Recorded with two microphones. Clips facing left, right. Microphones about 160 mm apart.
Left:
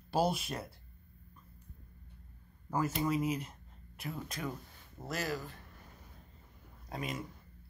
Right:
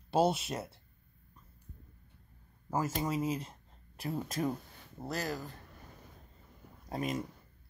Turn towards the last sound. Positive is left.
turn(degrees=-40)  # may be behind; listen again after turning